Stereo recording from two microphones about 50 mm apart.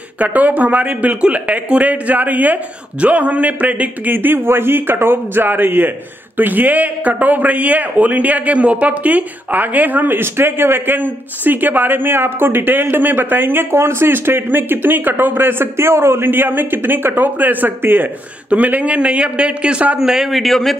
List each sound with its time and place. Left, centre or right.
0.2 s speech: right
18.5 s a man's voice: right
20.0 s a man's voice: centre